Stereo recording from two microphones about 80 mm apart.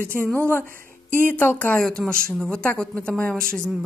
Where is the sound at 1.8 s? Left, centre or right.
Centre.